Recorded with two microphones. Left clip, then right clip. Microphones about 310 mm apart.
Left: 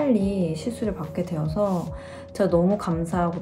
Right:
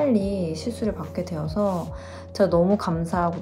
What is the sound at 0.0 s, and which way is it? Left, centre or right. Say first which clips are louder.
A woman's voice: even; centre.